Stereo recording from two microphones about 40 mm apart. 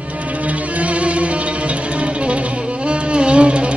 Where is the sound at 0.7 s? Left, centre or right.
Right.